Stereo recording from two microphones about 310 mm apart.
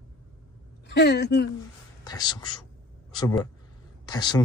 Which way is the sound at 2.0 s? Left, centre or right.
Centre.